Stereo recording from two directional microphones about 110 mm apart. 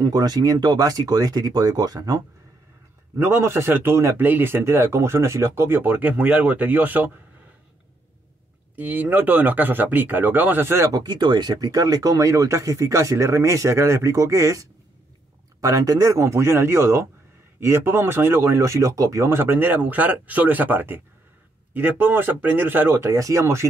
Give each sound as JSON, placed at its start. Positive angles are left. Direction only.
{"t": 0.0, "sound": "a man's voice", "side_deg": -35}
{"t": 8.7, "sound": "speech", "side_deg": -15}
{"t": 10.9, "sound": "a man's voice", "side_deg": -40}